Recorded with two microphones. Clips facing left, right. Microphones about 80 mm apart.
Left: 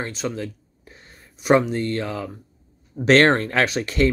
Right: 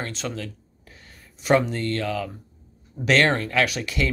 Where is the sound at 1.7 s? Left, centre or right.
Centre.